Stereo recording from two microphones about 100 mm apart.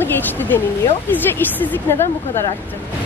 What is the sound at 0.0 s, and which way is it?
Speech, 20° left (ahead or behind).